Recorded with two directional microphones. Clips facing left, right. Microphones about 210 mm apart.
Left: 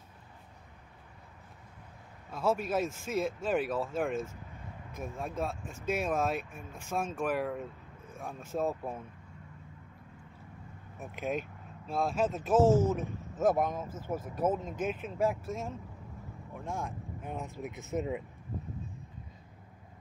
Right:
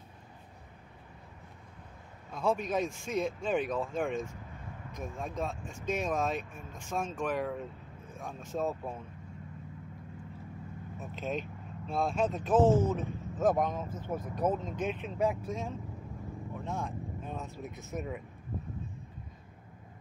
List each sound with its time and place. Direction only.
2.3 s speech: 5° left (ahead or behind)
11.0 s speech: 10° left (ahead or behind)